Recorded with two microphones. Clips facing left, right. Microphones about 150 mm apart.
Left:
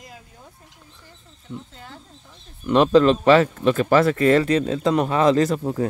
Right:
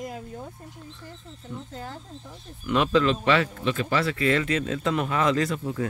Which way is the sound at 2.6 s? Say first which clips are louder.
Left 7 dB; 35° left (ahead or behind).